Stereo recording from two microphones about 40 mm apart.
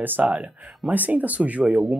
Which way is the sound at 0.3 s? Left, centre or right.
Right.